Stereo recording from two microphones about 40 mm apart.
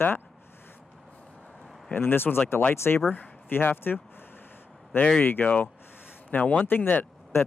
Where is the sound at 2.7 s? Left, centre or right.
Left.